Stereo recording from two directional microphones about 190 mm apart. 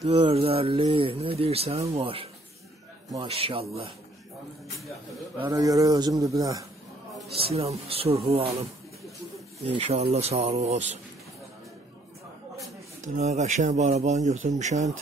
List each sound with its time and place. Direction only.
0.0 s a man's voice: 30° right (ahead or behind)
4.7 s speech: centre (ahead or behind)
5.4 s a man's voice: 20° right (ahead or behind)
7.3 s speech: 30° right (ahead or behind)
13.0 s speech: 35° right (ahead or behind)